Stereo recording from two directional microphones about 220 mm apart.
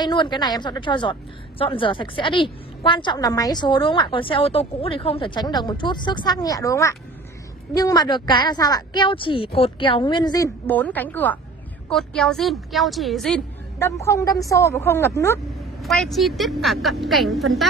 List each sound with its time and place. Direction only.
0.0 s a woman's voice: 20° left (ahead or behind); by 13.4 s centre (ahead or behind)
13.7 s a woman's voice: 15° left (ahead or behind)
15.8 s a woman's voice: centre (ahead or behind)